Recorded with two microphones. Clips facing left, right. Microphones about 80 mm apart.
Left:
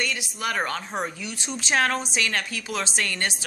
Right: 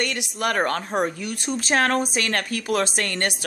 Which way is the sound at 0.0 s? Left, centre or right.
Right.